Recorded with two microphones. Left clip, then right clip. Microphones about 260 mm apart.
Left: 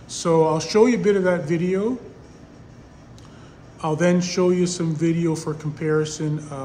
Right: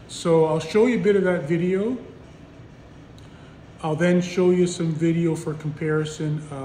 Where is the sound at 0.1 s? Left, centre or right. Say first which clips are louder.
Left 1 dB; centre.